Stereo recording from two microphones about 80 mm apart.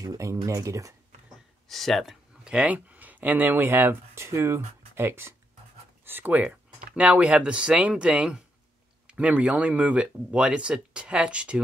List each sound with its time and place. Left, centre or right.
0.0 s speech: right
1.7 s speech: centre
2.4 s speech: centre